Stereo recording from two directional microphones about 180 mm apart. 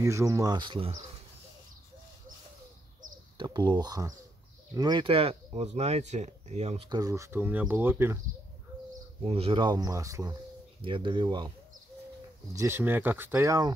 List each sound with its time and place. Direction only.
0.0 s speech: 15° right (ahead or behind)
3.3 s speech: 25° right (ahead or behind)
6.9 s speech: 20° right (ahead or behind)
9.2 s speech: 30° right (ahead or behind); by 10.3 s 15° right (ahead or behind)
10.8 s speech: 25° right (ahead or behind)
12.5 s speech: 15° right (ahead or behind)